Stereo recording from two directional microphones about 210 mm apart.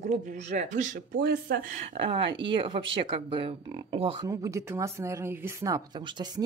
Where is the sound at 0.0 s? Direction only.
35° right (ahead or behind).